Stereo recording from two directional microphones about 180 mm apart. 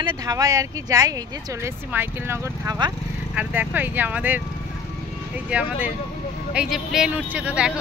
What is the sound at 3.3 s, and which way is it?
Speech, 10° right (ahead or behind).